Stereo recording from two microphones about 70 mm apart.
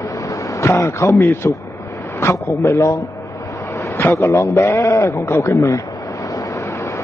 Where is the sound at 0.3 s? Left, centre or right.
Left.